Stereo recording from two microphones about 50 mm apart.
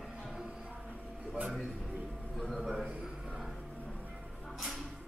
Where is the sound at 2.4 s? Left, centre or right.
Centre.